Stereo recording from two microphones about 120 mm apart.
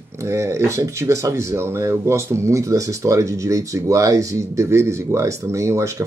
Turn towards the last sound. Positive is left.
turn(degrees=-25)  # may be behind; listen again after turning